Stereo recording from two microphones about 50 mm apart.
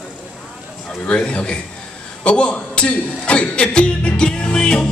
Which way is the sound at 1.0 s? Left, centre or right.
Left.